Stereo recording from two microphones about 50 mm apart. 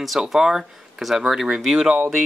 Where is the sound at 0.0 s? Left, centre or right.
Centre.